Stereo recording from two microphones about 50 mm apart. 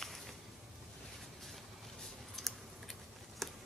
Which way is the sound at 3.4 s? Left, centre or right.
Centre.